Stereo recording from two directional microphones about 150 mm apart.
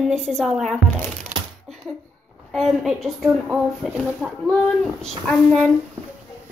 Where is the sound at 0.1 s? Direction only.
5° left (ahead or behind).